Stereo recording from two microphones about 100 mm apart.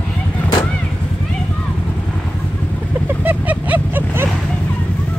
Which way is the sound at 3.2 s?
15° right (ahead or behind).